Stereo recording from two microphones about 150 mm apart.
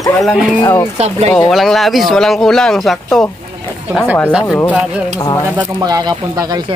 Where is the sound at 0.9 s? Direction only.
45° right (ahead or behind).